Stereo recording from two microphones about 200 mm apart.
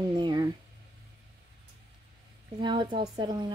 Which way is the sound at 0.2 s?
20° right (ahead or behind).